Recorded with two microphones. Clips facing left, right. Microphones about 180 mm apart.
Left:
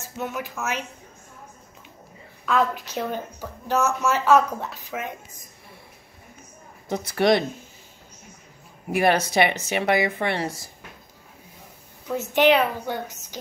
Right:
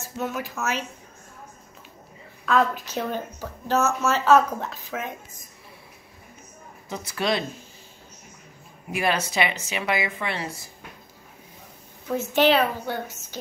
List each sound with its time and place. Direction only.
0.0 s a woman's voice: 15° left (ahead or behind)
2.4 s a woman's voice: 15° left (ahead or behind)
6.9 s speech: 60° left (ahead or behind)
8.9 s speech: 55° left (ahead or behind)
12.4 s a woman's voice: 15° left (ahead or behind)